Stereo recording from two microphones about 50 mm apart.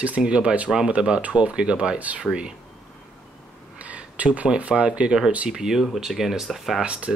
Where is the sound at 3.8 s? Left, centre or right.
Right.